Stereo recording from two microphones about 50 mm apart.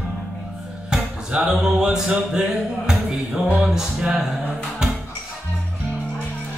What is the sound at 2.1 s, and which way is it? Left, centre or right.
Music, centre.